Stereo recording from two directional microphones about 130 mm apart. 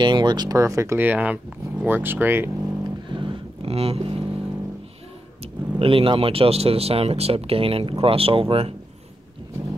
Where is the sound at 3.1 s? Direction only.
40° right (ahead or behind).